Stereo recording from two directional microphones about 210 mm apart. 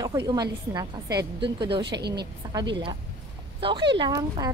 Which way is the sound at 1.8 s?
50° right (ahead or behind).